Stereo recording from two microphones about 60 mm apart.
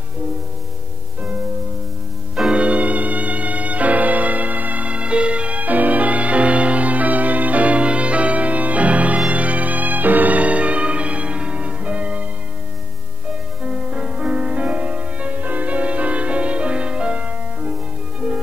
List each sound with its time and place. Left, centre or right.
2.5 s music: right
13.6 s music: centre